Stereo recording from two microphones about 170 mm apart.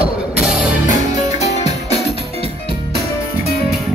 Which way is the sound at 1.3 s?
40° left (ahead or behind).